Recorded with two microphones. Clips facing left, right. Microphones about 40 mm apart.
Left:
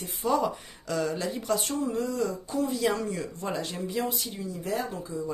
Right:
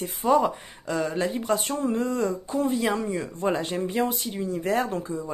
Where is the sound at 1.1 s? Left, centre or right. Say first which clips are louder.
Right 4 dB; right.